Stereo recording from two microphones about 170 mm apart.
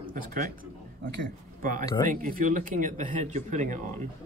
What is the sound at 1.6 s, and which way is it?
Speech, 55° right (ahead or behind).